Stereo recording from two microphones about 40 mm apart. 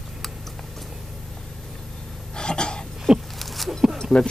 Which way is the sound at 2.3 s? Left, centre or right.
Left.